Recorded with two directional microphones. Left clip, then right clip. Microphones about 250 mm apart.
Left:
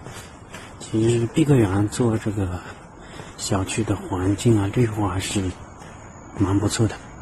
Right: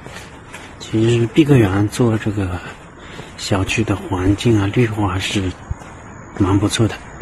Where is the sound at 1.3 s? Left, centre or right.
Centre.